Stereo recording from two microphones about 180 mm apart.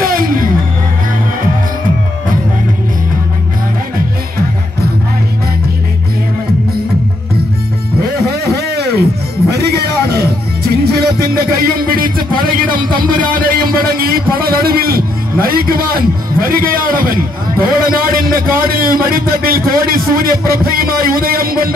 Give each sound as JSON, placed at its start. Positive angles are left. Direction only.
{"t": 0.0, "sound": "music", "side_deg": -50}
{"t": 8.3, "sound": "a sound", "side_deg": -60}
{"t": 9.5, "sound": "music", "side_deg": -65}
{"t": 12.9, "sound": "a man's voice", "side_deg": -50}